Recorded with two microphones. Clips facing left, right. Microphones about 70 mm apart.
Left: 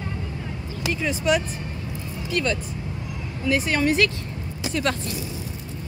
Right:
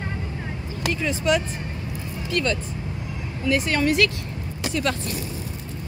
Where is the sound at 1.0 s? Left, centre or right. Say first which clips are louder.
Even; centre.